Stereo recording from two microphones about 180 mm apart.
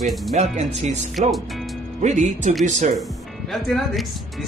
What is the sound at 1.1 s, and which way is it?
Music, centre (ahead or behind).